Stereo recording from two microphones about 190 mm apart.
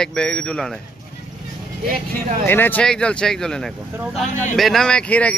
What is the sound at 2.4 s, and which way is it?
Speech, 10° left (ahead or behind).